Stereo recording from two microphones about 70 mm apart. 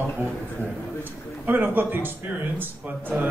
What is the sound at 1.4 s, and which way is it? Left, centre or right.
Speech, right.